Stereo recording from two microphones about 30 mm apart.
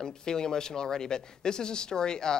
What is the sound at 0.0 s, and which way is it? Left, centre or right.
Speech, left.